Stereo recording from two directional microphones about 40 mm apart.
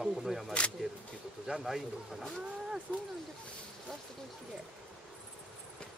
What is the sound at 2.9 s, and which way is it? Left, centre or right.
Speech, centre.